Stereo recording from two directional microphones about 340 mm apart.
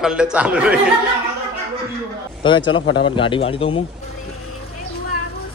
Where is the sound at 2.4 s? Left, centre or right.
Centre.